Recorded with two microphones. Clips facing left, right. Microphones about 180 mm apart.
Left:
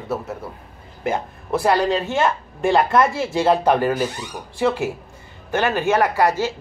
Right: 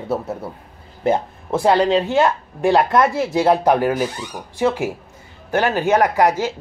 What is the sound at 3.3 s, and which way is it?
Speech, 10° right (ahead or behind).